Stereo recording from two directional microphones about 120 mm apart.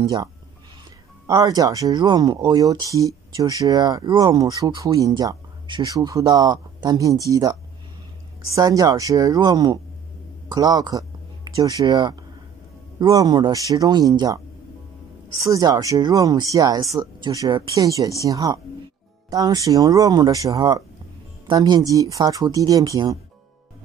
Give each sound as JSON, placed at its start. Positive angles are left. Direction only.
{"t": 1.2, "sound": "speech", "side_deg": -30}
{"t": 8.5, "sound": "speech", "side_deg": -30}
{"t": 15.4, "sound": "speech", "side_deg": -30}